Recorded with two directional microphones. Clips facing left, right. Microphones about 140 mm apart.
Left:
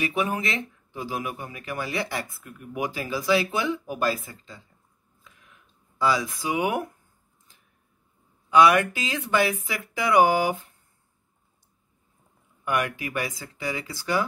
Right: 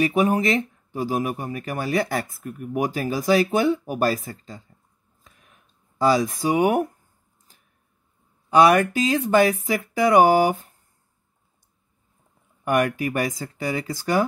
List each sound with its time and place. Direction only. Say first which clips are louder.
0.0 s speech: right 7 dB; 40° right (ahead or behind)
5.2 s a sound: even; 45° right (ahead or behind)
8.5 s speech: right 2 dB; 40° right (ahead or behind)
12.6 s speech: right 6 dB; 45° right (ahead or behind)